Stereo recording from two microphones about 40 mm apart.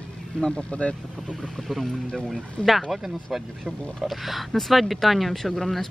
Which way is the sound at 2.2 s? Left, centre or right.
Centre.